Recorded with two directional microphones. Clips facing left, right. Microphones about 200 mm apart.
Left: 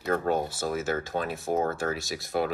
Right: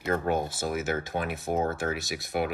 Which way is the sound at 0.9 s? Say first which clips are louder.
Left 1 dB; 15° right (ahead or behind).